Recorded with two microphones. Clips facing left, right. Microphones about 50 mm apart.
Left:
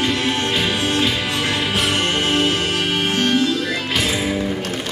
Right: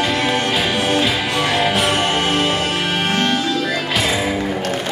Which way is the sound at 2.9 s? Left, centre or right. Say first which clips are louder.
Even; right.